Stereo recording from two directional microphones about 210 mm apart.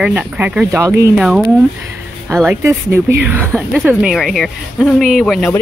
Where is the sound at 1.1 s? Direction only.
5° right (ahead or behind).